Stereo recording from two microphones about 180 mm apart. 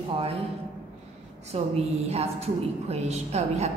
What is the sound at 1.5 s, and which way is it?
A woman's voice, 35° right (ahead or behind).